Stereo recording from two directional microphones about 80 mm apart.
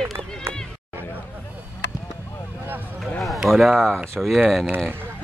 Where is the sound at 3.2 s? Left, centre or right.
Centre.